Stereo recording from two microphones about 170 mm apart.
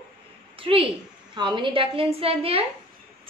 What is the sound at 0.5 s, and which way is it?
A woman's voice, 30° right (ahead or behind).